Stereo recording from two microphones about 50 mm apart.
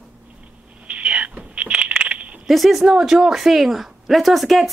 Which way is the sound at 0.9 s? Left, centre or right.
Right.